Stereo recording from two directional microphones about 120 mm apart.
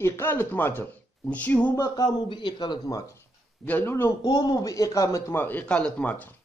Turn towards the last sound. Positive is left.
turn(degrees=15)  # may be behind; listen again after turning